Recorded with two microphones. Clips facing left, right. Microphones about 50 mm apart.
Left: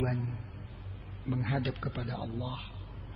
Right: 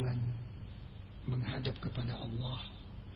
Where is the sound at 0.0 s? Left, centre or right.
Left.